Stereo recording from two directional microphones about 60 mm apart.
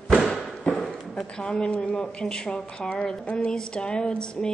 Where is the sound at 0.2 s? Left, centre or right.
Centre.